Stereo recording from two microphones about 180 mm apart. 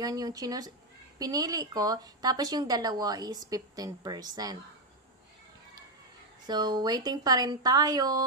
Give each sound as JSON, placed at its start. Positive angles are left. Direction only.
{"t": 0.0, "sound": "a woman's voice", "side_deg": -20}
{"t": 6.4, "sound": "a woman's voice", "side_deg": -25}